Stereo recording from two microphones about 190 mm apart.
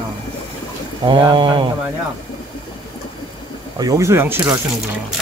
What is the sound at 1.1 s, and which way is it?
Speech, 25° right (ahead or behind).